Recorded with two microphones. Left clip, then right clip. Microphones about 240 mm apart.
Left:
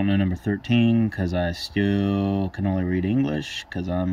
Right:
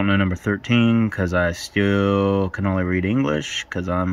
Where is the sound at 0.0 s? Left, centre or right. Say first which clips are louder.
Right 4 dB; centre.